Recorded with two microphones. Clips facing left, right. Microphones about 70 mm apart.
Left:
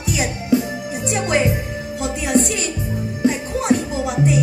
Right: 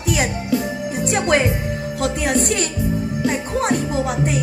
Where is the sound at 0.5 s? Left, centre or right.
Left.